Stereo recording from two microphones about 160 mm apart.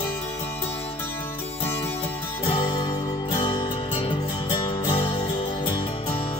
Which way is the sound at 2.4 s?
30° left (ahead or behind).